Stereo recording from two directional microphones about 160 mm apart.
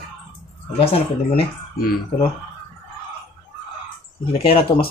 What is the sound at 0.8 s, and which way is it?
Speech, 40° left (ahead or behind).